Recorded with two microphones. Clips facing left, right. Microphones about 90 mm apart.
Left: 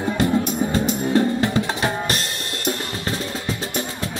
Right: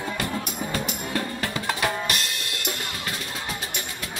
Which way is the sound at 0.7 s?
30° left (ahead or behind).